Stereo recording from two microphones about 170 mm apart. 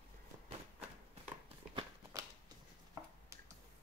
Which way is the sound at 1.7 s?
20° right (ahead or behind).